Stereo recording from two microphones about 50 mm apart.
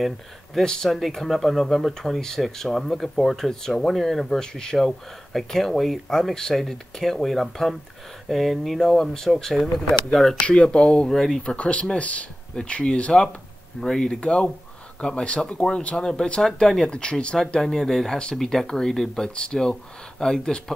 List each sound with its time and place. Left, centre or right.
0.8 s speech: centre
10.4 s speech: centre
11.1 s speech: centre
11.4 s speech: left
13.7 s speech: centre
14.0 s speech: left
17.6 s speech: centre